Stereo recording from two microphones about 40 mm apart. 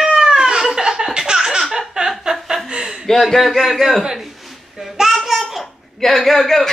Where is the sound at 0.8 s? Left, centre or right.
Centre.